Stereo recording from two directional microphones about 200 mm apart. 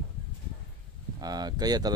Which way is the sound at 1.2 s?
20° right (ahead or behind).